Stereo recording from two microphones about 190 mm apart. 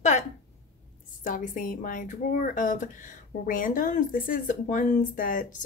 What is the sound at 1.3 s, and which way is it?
Speech, 45° left (ahead or behind).